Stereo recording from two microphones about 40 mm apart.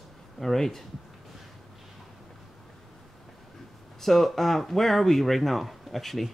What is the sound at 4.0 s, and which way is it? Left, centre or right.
Speech, centre.